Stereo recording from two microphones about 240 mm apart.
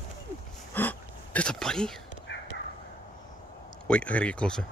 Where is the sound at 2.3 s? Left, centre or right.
Left.